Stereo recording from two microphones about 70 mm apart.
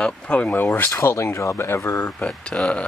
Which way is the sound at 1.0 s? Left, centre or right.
Left.